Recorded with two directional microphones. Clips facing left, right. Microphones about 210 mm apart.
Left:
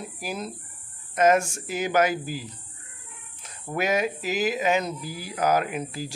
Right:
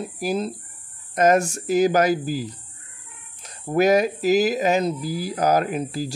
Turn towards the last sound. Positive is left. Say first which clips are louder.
# right 5 dB
turn(degrees=-35)  # may be behind; listen again after turning